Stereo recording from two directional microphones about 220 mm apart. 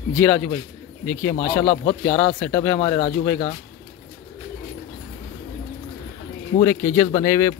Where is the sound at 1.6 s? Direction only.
25° left (ahead or behind).